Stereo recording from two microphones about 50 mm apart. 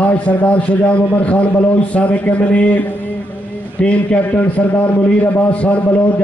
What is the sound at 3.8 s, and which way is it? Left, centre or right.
A man's voice, left.